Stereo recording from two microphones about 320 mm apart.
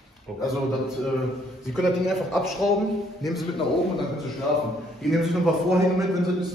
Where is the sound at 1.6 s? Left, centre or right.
Centre.